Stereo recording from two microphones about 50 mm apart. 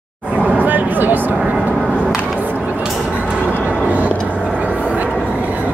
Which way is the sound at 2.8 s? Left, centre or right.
Centre.